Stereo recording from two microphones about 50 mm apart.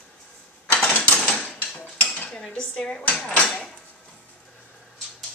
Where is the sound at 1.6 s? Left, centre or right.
Left.